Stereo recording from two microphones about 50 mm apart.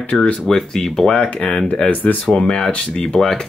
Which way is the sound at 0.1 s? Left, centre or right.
Left.